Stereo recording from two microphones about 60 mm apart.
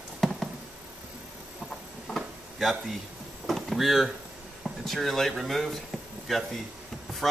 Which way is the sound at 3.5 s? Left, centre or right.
Centre.